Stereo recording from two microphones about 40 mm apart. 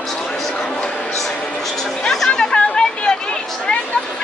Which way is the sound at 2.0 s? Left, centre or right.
Centre.